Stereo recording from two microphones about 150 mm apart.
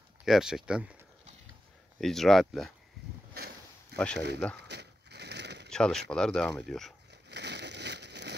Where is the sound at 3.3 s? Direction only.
90° right.